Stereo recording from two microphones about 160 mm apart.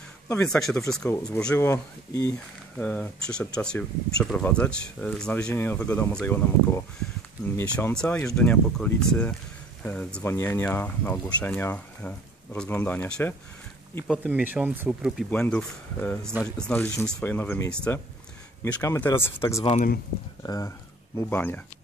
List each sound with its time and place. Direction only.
0.4 s speech: 5° left (ahead or behind)
1.0 s speech: 15° left (ahead or behind)
1.7 s speech: 20° left (ahead or behind)
2.3 s speech: 10° left (ahead or behind)
14.0 s speech: 5° right (ahead or behind)
15.3 s speech: 10° left (ahead or behind)